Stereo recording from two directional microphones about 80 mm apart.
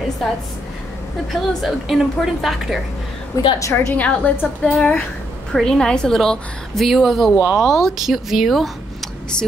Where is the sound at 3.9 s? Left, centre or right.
Centre.